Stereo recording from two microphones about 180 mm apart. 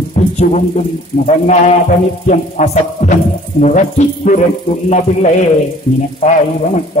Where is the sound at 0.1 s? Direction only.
40° left (ahead or behind).